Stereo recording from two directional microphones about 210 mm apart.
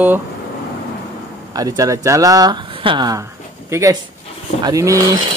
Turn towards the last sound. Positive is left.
turn(degrees=-15)  # may be behind; listen again after turning